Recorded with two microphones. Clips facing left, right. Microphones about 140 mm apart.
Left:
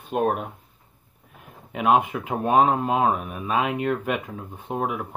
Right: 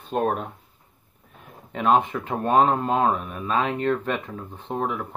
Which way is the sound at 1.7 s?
10° left (ahead or behind).